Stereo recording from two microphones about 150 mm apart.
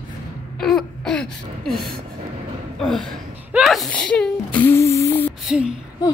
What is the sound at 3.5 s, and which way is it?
Whimper, centre (ahead or behind).